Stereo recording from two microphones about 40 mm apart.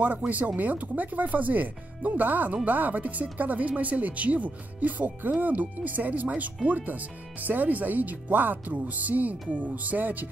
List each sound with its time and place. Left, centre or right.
0.3 s speech: right